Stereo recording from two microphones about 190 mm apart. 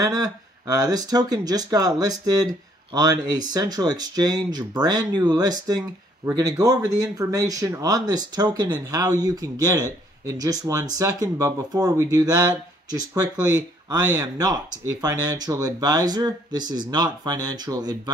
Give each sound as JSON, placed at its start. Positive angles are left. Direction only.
{"t": 0.0, "sound": "speech", "side_deg": -20}